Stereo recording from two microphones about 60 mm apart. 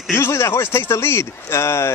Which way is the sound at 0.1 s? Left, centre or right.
Left.